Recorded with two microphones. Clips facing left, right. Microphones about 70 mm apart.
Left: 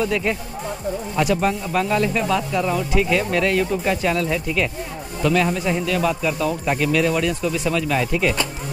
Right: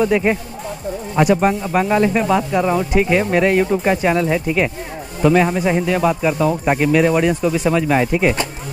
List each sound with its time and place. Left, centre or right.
0.0 s speech: right